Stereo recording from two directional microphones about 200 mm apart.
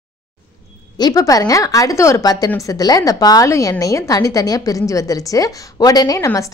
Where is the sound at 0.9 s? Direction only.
20° left (ahead or behind).